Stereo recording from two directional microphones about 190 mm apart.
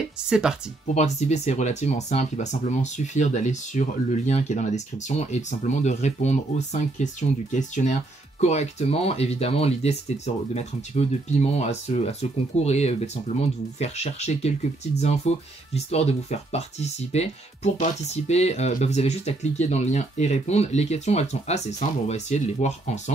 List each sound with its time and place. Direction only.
0.3 s speech: 5° right (ahead or behind)
0.9 s speech: 35° left (ahead or behind)